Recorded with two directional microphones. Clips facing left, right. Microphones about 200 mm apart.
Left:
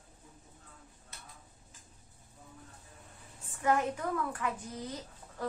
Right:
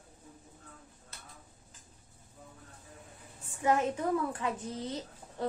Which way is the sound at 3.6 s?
20° right (ahead or behind).